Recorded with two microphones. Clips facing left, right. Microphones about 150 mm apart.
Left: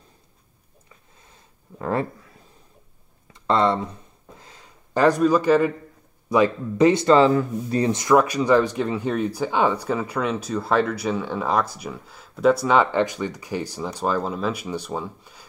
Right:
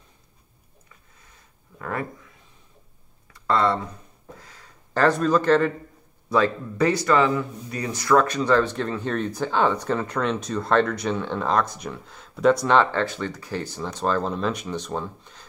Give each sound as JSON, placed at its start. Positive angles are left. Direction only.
{"t": 1.8, "sound": "speech", "side_deg": 30}
{"t": 3.3, "sound": "speech", "side_deg": 20}
{"t": 4.4, "sound": "a sound", "side_deg": 20}
{"t": 6.2, "sound": "speech", "side_deg": 15}